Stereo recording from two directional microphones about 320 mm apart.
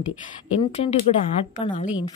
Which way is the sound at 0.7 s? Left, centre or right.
Centre.